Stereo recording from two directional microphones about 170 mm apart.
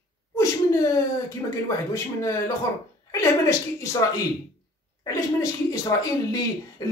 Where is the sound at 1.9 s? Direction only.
20° left (ahead or behind).